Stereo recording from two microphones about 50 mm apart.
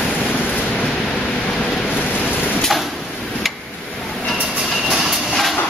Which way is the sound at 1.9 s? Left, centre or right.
Left.